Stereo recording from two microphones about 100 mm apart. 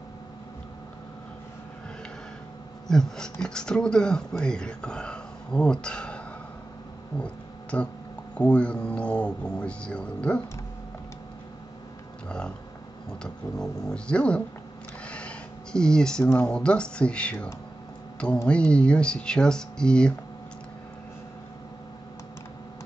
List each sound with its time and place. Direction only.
2.9 s speech: 5° left (ahead or behind)
7.7 s speech: 15° left (ahead or behind)
12.3 s speech: 10° left (ahead or behind)
15.0 s a sound: 10° left (ahead or behind)
16.3 s speech: 10° left (ahead or behind)
18.5 s speech: 10° left (ahead or behind)